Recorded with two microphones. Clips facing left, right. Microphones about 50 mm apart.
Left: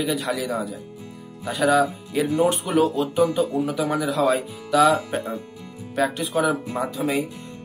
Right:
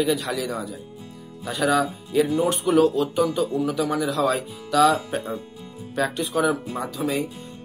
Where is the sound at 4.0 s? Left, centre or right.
Centre.